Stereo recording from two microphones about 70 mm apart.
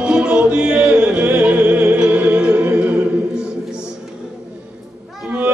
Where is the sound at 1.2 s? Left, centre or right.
Right.